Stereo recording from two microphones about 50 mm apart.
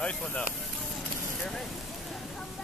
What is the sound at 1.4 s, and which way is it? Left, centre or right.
Speech, centre.